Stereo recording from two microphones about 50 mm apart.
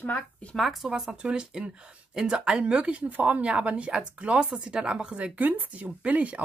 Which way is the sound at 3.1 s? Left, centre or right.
Right.